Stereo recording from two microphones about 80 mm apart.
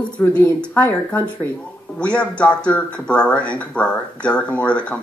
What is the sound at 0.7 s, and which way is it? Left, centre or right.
Speech, left.